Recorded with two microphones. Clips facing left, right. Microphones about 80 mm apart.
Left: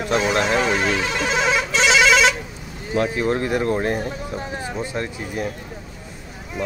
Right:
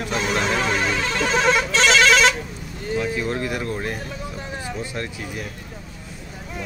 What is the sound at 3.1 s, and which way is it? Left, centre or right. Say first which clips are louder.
Speech: left 4 dB; left.